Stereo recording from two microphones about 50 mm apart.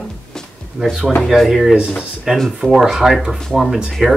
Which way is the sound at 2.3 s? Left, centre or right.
Centre.